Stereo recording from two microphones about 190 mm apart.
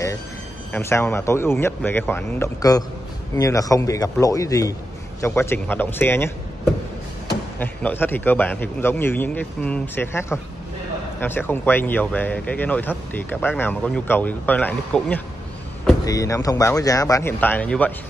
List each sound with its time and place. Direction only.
0.7 s speech: 15° left (ahead or behind)